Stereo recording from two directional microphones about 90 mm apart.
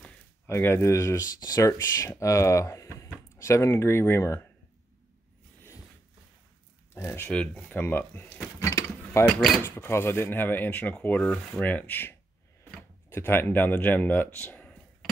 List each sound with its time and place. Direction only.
0.5 s speech: 25° left (ahead or behind)
6.9 s speech: 30° left (ahead or behind)
7.2 s speech: 10° left (ahead or behind)
8.5 s mechanisms: 35° left (ahead or behind)
9.6 s speech: 25° left (ahead or behind)